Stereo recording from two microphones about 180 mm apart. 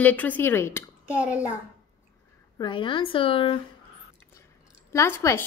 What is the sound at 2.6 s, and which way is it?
Speech, 25° left (ahead or behind).